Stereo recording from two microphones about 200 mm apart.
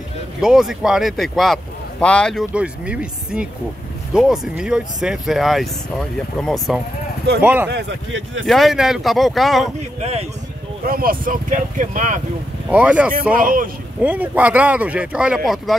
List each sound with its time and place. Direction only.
0.4 s speech: centre (ahead or behind)
2.5 s speech: 5° right (ahead or behind)
7.4 s speech: 10° right (ahead or behind)
7.7 s speech: 70° right (ahead or behind)
8.5 s speech: centre (ahead or behind)
9.9 s speech: 30° right (ahead or behind)
10.9 s speech: 45° right (ahead or behind)
12.6 s speech: 5° right (ahead or behind)
13.3 s speech: 45° right (ahead or behind)
14.0 s speech: 10° right (ahead or behind)